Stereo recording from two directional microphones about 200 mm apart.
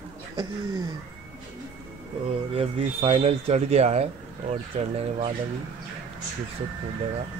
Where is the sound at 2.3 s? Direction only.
30° right (ahead or behind).